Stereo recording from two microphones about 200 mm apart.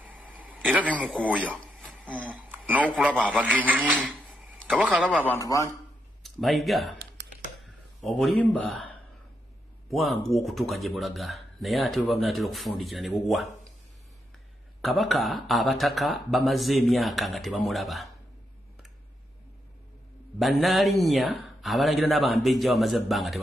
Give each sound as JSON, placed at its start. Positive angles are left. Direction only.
{"t": 0.0, "sound": "a sound", "side_deg": -5}
{"t": 1.2, "sound": "speech", "side_deg": -5}
{"t": 5.2, "sound": "a man's voice", "side_deg": 15}
{"t": 6.2, "sound": "speech", "side_deg": 0}
{"t": 14.8, "sound": "speech", "side_deg": 0}
{"t": 20.3, "sound": "speech", "side_deg": 0}